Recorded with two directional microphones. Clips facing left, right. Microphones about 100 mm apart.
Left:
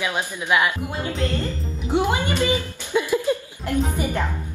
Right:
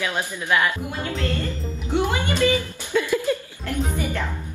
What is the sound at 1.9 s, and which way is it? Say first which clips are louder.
Speech: left 2 dB; 20° left (ahead or behind).